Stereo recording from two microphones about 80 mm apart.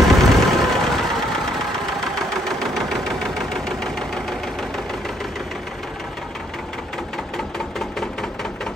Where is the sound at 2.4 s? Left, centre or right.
Centre.